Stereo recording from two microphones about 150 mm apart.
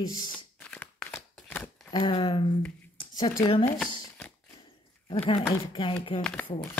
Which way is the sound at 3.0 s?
35° left (ahead or behind).